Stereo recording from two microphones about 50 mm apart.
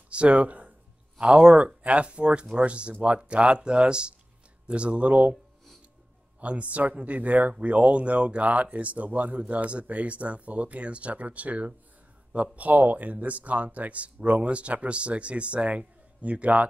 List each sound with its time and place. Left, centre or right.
0.1 s speech: right
1.2 s speech: centre
6.4 s speech: right